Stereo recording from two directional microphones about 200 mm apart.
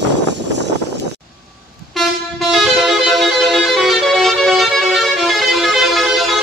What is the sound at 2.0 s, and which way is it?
Music, centre (ahead or behind).